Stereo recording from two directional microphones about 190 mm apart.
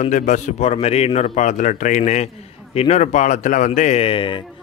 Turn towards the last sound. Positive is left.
turn(degrees=25)  # may be behind; listen again after turning